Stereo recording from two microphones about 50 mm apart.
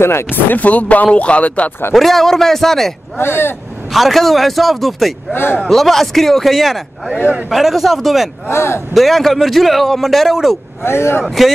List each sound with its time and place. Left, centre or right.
0.0 s speech: left
0.3 s speech: left
2.0 s speech: centre
3.2 s speech: left
3.9 s speech: centre
5.3 s speech: left
5.7 s speech: centre
8.5 s speech: left
8.9 s speech: centre
10.8 s speech: left
11.2 s speech: centre